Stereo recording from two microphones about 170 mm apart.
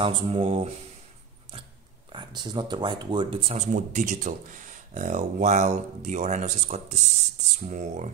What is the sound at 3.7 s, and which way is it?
Speech, 50° right (ahead or behind).